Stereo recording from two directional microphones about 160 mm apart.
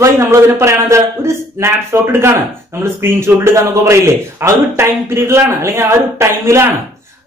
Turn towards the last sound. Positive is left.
turn(degrees=-15)  # may be behind; listen again after turning